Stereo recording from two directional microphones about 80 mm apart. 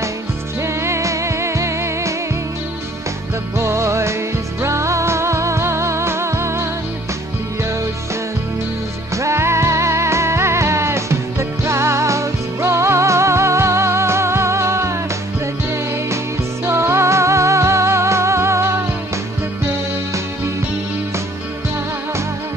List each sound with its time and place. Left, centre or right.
0.8 s music: right
3.5 s music: right
9.1 s music: right
16.6 s music: right